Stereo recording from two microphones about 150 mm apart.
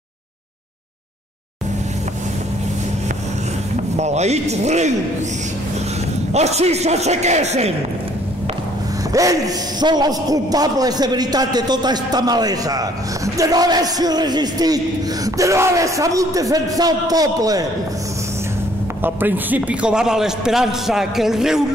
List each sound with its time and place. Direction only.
3.9 s speech: 50° right (ahead or behind)
6.3 s a man's voice: 45° right (ahead or behind)
9.1 s a man's voice: 25° right (ahead or behind)
19.0 s a man's voice: 10° right (ahead or behind)